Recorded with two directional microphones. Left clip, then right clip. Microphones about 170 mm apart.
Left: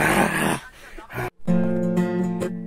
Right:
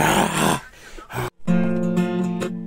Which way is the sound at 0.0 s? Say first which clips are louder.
Right 1 dB; 30° right (ahead or behind).